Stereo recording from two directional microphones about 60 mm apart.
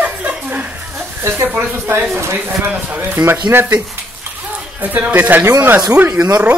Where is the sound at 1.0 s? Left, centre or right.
Right.